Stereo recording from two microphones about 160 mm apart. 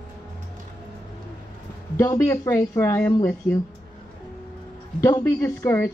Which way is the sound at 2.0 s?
20° left (ahead or behind).